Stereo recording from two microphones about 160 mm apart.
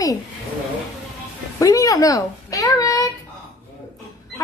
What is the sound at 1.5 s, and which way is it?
Speech, 20° left (ahead or behind).